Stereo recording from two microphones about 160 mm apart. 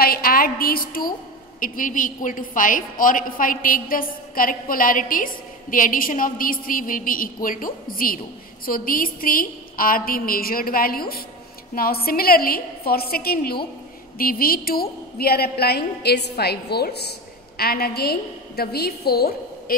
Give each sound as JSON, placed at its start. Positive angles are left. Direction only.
{"t": 0.0, "sound": "a woman's voice", "side_deg": 70}
{"t": 17.6, "sound": "a woman's voice", "side_deg": 75}